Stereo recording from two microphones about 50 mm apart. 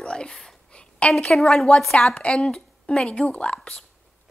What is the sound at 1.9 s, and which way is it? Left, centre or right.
A woman's voice, left.